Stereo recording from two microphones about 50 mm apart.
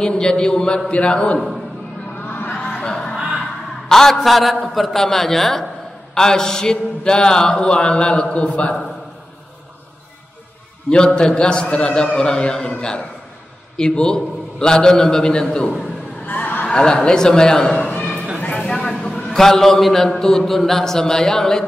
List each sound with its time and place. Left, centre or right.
0.0 s a man's voice: centre
0.8 s mantra: left
2.1 s a sound: left
2.5 s chuckle: centre
3.9 s a man's voice: centre
6.1 s mantra: centre
11.1 s a man's voice: centre
16.3 s a sound: left
16.6 s a man's voice: centre
18.6 s a sound: centre
19.3 s a man's voice: centre